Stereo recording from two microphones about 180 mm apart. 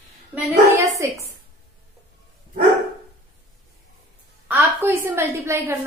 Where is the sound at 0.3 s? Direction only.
10° right (ahead or behind).